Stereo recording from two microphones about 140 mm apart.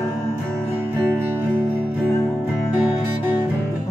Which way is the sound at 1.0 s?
15° right (ahead or behind).